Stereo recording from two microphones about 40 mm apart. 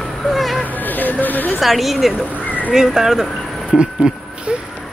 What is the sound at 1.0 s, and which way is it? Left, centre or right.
Chatter, left.